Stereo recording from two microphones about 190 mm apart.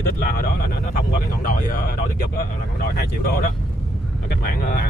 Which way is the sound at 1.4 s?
45° left (ahead or behind).